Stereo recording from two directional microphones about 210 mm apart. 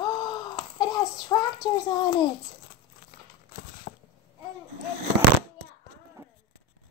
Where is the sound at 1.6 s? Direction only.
20° left (ahead or behind).